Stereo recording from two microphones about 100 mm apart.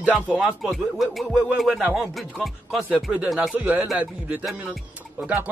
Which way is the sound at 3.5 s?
15° right (ahead or behind).